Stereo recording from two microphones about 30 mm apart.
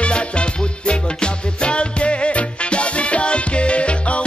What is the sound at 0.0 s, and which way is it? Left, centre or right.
Music, left.